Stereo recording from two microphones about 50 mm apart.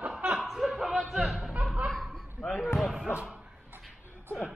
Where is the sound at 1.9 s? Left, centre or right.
Left.